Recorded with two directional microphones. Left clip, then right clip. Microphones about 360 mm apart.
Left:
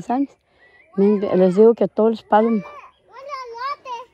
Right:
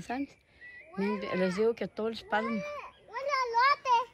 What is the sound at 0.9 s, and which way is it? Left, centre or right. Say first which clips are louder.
Speech: left 15 dB; centre.